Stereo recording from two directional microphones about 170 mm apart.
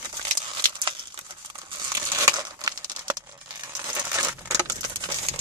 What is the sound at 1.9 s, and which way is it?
Crumpling, 20° right (ahead or behind).